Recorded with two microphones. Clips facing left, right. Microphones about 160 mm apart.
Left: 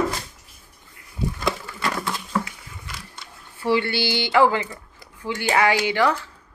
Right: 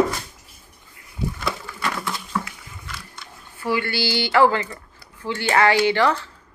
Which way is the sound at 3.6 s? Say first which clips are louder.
Left 2 dB; 25° left (ahead or behind).